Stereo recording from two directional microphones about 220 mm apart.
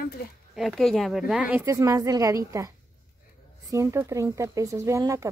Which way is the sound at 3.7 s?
15° right (ahead or behind).